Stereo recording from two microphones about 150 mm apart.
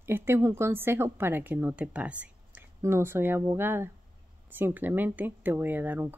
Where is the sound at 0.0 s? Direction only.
15° right (ahead or behind).